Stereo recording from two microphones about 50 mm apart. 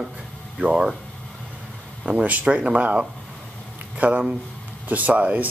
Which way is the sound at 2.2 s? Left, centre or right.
Right.